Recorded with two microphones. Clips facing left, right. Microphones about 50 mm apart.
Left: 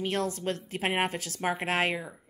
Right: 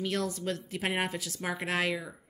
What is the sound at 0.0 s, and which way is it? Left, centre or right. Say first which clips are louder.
A woman's voice: left 2 dB; left.